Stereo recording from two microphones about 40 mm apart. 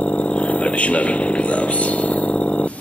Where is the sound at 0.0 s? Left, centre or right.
Left.